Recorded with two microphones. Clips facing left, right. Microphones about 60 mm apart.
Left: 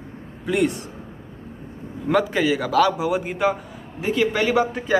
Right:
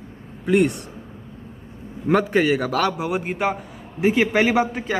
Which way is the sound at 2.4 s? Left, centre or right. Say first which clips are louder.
Left 1 dB; right.